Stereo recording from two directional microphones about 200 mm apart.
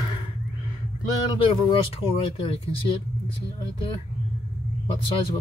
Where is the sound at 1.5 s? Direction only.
25° left (ahead or behind).